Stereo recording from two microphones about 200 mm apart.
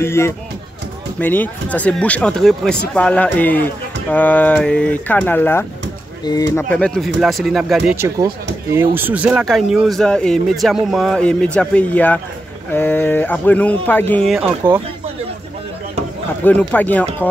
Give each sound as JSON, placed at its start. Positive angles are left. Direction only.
{"t": 0.0, "sound": "speech", "side_deg": 15}
{"t": 14.6, "sound": "speech", "side_deg": -10}
{"t": 16.4, "sound": "speech", "side_deg": 10}